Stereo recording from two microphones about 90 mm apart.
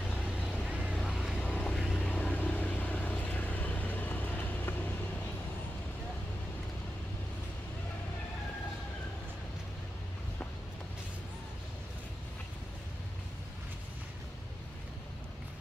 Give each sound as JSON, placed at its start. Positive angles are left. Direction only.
{"t": 0.1, "sound": "vehicle", "side_deg": 15}
{"t": 0.9, "sound": "vehicle", "side_deg": 0}